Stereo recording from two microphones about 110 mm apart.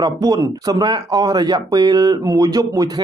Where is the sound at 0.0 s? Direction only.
35° right (ahead or behind).